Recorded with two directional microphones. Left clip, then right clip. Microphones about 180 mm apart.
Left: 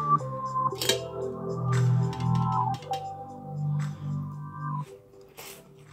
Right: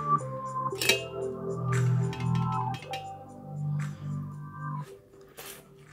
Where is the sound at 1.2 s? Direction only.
35° left (ahead or behind).